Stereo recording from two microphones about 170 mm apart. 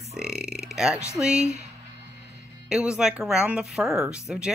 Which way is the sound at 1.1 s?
5° right (ahead or behind).